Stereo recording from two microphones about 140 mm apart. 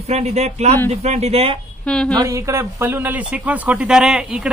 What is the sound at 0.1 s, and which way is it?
A man's voice, 50° right (ahead or behind).